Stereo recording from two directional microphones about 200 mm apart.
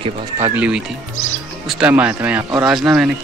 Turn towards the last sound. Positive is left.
turn(degrees=-5)  # may be behind; listen again after turning